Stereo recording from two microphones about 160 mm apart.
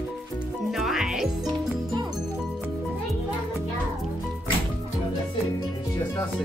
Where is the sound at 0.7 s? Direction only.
Centre (ahead or behind).